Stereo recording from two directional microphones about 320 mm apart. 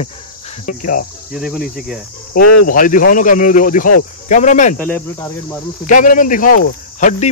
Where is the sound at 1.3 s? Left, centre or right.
Centre.